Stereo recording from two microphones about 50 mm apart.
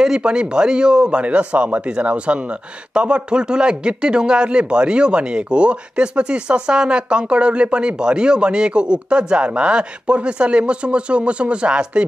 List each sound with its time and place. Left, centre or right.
0.0 s speech: centre